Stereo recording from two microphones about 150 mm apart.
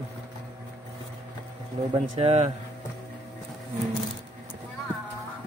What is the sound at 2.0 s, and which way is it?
Speech, 40° right (ahead or behind).